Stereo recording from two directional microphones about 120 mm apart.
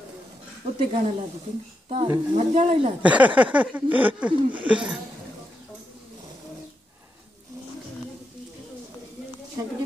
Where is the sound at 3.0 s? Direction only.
10° right (ahead or behind).